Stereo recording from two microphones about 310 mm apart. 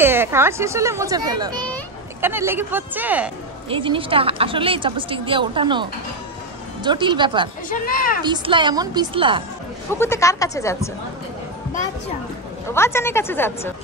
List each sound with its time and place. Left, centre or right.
0.0 s speech: centre
3.6 s speech: centre
7.8 s a woman's voice: left
8.2 s speech: centre
9.9 s a woman's voice: centre
12.7 s a woman's voice: centre